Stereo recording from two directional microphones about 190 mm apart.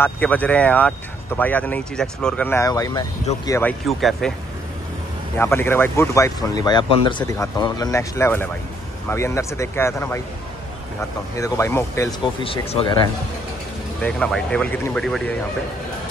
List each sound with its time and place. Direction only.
0.0 s speech: 10° left (ahead or behind)
3.8 s speech: centre (ahead or behind)
5.4 s speech: 10° left (ahead or behind)
11.3 s speech: 15° left (ahead or behind)
12.4 s speech: 30° left (ahead or behind)
14.0 s speech: 5° left (ahead or behind)